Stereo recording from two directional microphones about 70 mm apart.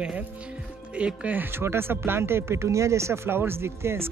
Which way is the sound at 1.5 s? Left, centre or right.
Right.